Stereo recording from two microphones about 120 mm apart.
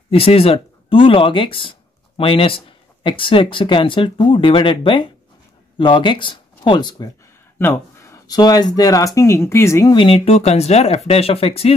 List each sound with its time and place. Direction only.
0.1 s speech: 55° left (ahead or behind); by 7.1 s 35° left (ahead or behind)
7.5 s speech: 20° left (ahead or behind)
9.8 s speech: 45° left (ahead or behind)
10.3 s speech: 65° left (ahead or behind)